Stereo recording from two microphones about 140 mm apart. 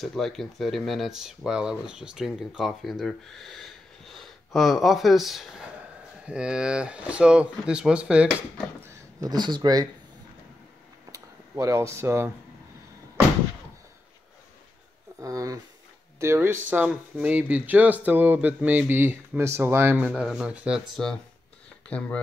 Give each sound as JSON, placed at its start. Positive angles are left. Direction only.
{"t": 0.0, "sound": "speech", "side_deg": 5}
{"t": 8.8, "sound": "speech", "side_deg": -25}
{"t": 11.1, "sound": "a sound", "side_deg": -20}
{"t": 15.1, "sound": "speech", "side_deg": -25}